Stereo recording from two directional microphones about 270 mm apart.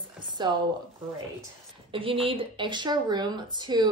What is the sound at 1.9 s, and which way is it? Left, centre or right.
A woman's voice, centre.